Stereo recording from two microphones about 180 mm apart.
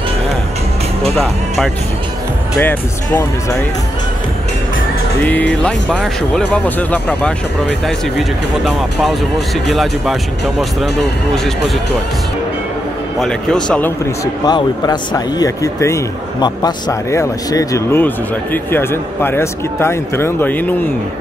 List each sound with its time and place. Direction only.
1.1 s speech: centre (ahead or behind)
2.6 s speech: 10° left (ahead or behind)
5.2 s speech: 10° left (ahead or behind)
13.2 s speech: 5° left (ahead or behind)